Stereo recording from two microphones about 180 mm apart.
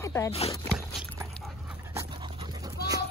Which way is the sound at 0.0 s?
15° left (ahead or behind).